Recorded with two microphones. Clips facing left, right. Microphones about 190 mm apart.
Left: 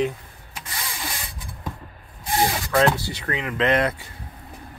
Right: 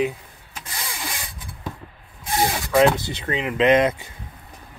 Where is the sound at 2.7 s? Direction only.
15° right (ahead or behind).